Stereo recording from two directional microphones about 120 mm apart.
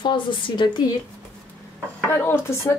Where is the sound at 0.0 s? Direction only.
40° left (ahead or behind).